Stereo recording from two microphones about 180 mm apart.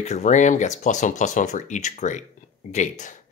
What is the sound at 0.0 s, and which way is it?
Speech, 40° left (ahead or behind).